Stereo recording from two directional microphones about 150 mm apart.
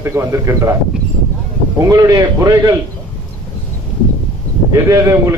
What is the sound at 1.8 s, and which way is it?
Speech, 25° right (ahead or behind).